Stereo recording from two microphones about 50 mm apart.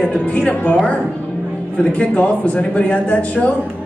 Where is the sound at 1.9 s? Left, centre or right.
Left.